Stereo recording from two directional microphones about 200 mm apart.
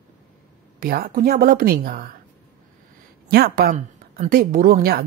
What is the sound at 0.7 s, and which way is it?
Speech, 50° right (ahead or behind).